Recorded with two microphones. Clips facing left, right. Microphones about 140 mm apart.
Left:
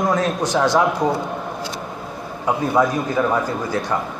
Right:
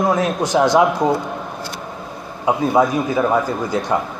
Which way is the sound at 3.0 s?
10° right (ahead or behind).